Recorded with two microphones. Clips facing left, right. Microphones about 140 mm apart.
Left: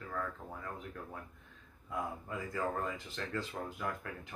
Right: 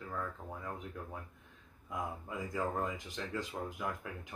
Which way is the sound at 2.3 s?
15° right (ahead or behind).